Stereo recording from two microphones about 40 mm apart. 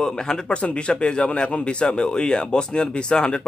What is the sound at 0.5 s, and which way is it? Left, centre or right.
A man's voice, left.